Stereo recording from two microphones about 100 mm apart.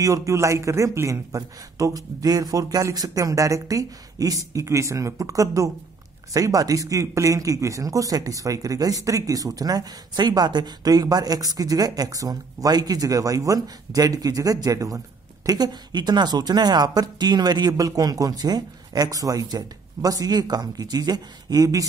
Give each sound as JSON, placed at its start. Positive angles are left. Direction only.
{"t": 0.0, "sound": "speech", "side_deg": -35}